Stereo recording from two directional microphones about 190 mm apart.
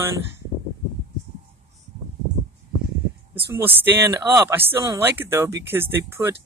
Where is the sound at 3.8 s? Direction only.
10° right (ahead or behind).